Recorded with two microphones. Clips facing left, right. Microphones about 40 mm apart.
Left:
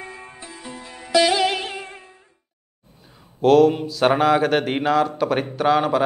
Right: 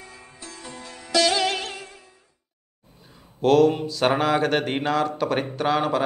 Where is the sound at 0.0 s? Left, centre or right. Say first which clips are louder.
Left 7 dB; left.